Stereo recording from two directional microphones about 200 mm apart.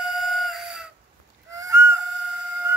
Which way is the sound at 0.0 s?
Centre (ahead or behind).